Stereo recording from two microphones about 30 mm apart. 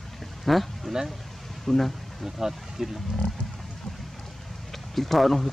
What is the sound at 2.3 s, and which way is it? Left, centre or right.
Speech, centre.